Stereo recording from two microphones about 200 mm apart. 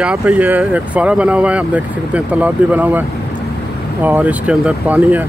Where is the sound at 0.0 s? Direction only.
5° right (ahead or behind).